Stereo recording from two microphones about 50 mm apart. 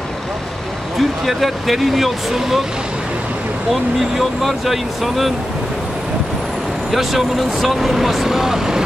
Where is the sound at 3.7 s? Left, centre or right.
Centre.